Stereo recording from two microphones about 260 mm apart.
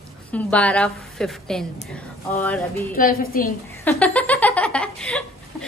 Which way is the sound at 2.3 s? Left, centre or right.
Centre.